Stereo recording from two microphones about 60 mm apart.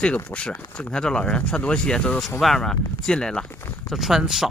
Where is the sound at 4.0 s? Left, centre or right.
Centre.